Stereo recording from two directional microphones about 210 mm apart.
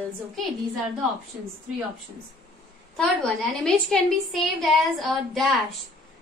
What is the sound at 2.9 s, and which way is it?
A woman's voice, 5° left (ahead or behind).